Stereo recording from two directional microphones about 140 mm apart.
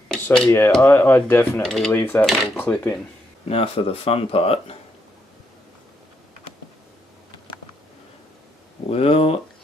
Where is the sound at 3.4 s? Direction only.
45° left (ahead or behind).